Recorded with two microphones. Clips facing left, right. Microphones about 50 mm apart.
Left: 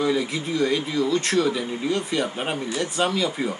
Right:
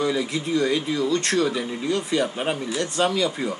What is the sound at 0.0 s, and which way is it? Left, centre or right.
A man's voice, centre.